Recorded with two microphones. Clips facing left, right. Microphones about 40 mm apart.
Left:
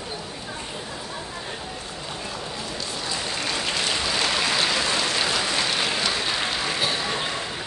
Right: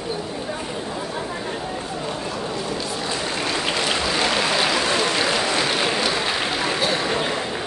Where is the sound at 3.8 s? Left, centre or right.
Centre.